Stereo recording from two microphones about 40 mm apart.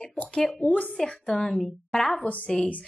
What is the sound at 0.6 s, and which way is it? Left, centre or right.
Speech, left.